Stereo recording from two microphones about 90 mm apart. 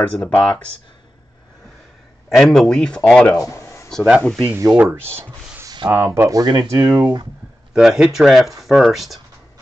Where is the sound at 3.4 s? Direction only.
35° left (ahead or behind).